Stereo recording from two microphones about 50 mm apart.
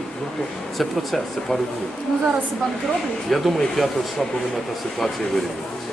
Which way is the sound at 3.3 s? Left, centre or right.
Centre.